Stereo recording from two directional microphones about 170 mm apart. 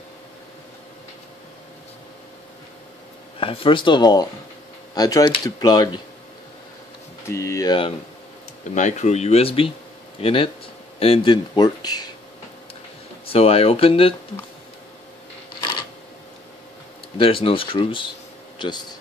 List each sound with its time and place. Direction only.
3.3 s speech: 30° left (ahead or behind)
7.2 s speech: 15° left (ahead or behind)
8.7 s speech: 45° left (ahead or behind); by 12.1 s 25° left (ahead or behind)
13.3 s speech: 35° left (ahead or behind)
17.2 s speech: 30° left (ahead or behind)